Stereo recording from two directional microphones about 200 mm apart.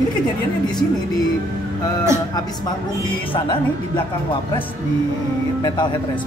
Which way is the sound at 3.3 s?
20° left (ahead or behind).